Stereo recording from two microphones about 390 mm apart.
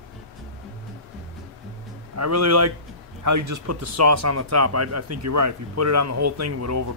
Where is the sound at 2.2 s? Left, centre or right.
Right.